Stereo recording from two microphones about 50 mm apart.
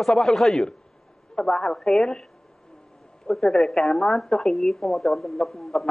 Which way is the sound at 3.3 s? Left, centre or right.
Centre.